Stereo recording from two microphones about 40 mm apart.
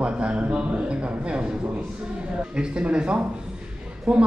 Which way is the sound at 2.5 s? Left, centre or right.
Right.